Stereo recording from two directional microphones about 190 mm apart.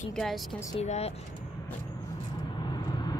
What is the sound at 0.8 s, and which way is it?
Speech, 35° left (ahead or behind).